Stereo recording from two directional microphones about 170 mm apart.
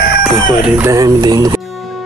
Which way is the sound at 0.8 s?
20° right (ahead or behind).